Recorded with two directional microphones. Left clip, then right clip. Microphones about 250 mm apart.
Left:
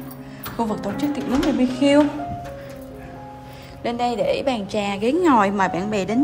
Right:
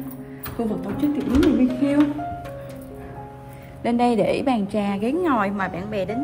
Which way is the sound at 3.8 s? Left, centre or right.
Centre.